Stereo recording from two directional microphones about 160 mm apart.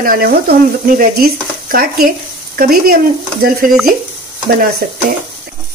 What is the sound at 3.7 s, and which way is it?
Speech, centre (ahead or behind).